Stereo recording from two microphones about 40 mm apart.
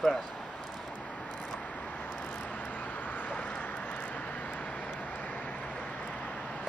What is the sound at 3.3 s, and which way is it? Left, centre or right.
Vehicle, left.